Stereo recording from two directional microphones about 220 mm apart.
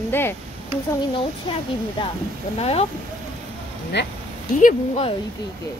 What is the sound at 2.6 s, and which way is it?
Speech, 30° left (ahead or behind).